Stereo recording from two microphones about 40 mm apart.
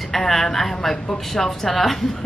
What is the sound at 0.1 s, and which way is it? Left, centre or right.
A woman's voice, centre.